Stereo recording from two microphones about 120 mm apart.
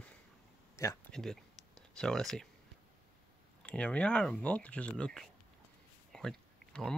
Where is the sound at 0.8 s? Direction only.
25° left (ahead or behind).